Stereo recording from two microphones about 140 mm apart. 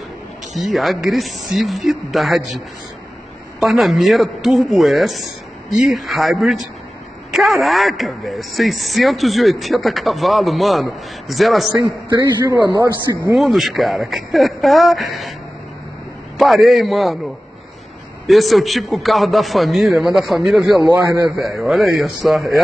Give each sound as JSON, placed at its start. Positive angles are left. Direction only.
{"t": 0.5, "sound": "speech", "side_deg": 0}
{"t": 11.8, "sound": "a man's voice", "side_deg": -25}
{"t": 13.3, "sound": "speech", "side_deg": 0}
{"t": 16.3, "sound": "speech", "side_deg": 0}
{"t": 18.2, "sound": "speech", "side_deg": 0}